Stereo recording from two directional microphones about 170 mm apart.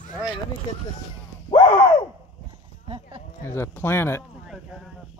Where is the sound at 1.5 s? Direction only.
30° left (ahead or behind).